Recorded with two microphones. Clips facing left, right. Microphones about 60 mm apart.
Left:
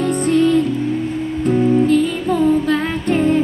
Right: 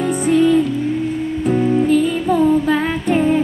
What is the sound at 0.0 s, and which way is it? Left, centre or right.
Music, centre.